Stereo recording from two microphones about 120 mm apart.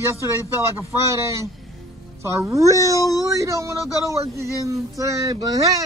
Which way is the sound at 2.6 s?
25° left (ahead or behind).